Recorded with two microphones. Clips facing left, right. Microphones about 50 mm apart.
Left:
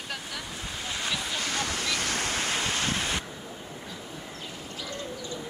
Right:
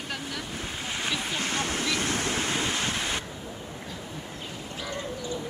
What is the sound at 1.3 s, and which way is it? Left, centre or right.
Waves, centre.